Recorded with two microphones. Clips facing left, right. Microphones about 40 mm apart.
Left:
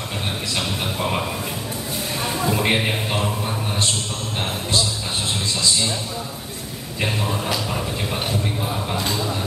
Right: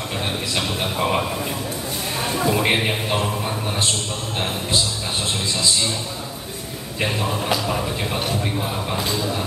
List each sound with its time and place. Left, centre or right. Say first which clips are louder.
0.9 s speech: right 4 dB; centre
2.5 s a man's voice: even; centre